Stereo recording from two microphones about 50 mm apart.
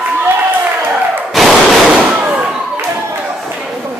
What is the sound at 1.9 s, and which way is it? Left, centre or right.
Fireworks, right.